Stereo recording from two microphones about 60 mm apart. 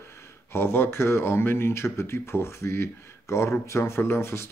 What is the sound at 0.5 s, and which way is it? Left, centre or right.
Speech, left.